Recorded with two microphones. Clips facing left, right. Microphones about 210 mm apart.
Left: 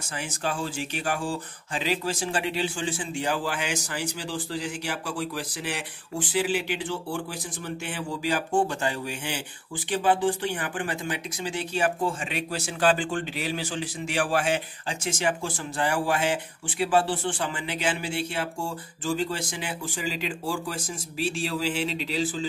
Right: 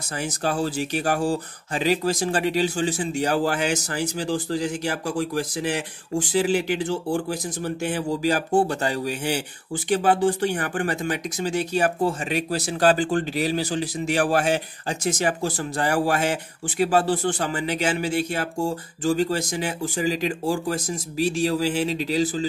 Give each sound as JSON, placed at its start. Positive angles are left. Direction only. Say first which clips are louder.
{"t": 0.0, "sound": "speech", "louder": "right 5 dB", "side_deg": -40}